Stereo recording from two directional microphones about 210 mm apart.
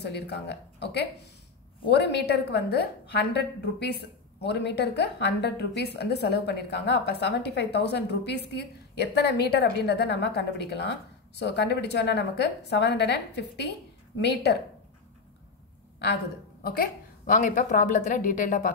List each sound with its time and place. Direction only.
0.0 s a woman's voice: 55° left (ahead or behind)
16.6 s a woman's voice: 45° left (ahead or behind)